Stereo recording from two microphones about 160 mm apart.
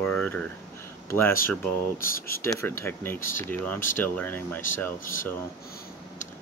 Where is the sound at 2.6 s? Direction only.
15° left (ahead or behind).